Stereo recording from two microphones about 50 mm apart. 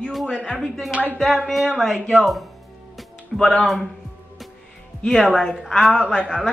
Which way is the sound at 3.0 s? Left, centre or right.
Centre.